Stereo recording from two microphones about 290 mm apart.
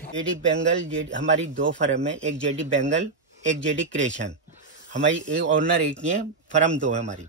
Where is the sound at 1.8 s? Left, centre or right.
Right.